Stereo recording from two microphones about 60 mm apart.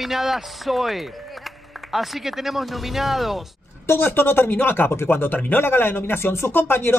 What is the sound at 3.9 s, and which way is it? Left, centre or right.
Speech, left.